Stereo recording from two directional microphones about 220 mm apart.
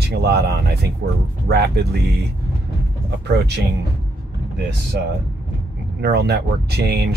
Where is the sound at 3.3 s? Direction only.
50° right (ahead or behind).